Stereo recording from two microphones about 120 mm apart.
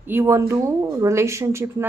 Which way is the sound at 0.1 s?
20° right (ahead or behind).